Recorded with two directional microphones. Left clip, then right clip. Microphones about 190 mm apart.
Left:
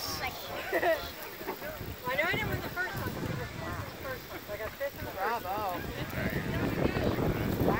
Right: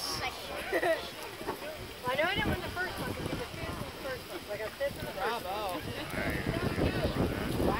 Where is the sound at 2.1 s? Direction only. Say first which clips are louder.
Even; 30° right (ahead or behind).